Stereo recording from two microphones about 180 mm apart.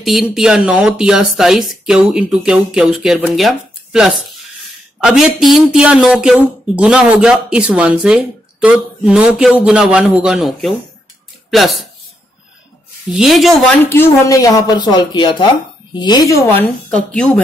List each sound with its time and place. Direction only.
0.0 s speech: centre (ahead or behind)
13.1 s speech: centre (ahead or behind)
13.8 s speech: 15° left (ahead or behind)
16.9 s speech: 5° left (ahead or behind)